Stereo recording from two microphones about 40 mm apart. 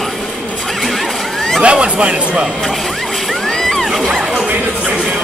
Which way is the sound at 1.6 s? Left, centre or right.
Right.